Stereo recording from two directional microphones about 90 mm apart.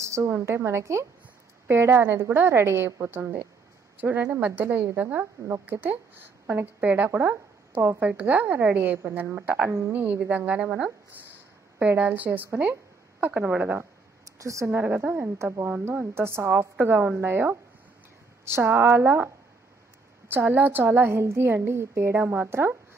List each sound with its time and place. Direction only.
0.0 s a woman's voice: 30° right (ahead or behind)
14.4 s a woman's voice: 35° right (ahead or behind)
14.7 s a woman's voice: 20° right (ahead or behind)